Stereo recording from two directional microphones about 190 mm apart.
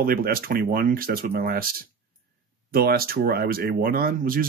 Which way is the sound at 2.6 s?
50° right (ahead or behind).